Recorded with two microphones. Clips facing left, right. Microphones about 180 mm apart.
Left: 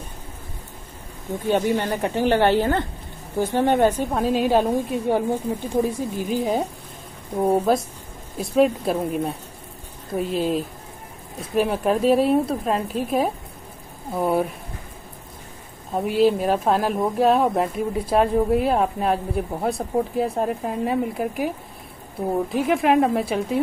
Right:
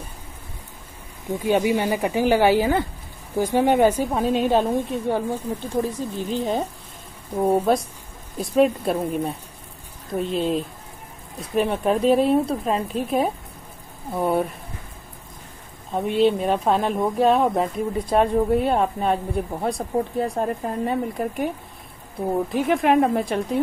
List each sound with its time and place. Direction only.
1.4 s speech: 10° right (ahead or behind)
5.0 s speech: 15° left (ahead or behind)
15.9 s speech: 5° left (ahead or behind)